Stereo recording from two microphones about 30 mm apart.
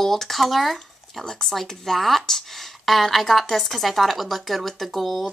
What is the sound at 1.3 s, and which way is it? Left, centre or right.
A woman's voice, centre.